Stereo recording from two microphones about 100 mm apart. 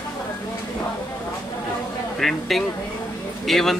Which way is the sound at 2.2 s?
Centre (ahead or behind).